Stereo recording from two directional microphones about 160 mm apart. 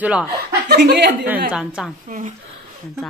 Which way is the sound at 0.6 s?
85° right.